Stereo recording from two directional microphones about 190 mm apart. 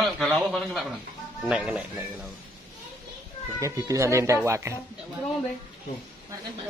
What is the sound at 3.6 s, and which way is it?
Speech, 15° right (ahead or behind).